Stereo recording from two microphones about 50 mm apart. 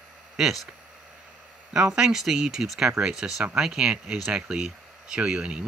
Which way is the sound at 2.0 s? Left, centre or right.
Centre.